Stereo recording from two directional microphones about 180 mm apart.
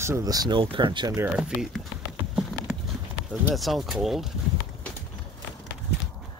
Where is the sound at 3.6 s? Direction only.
Centre (ahead or behind).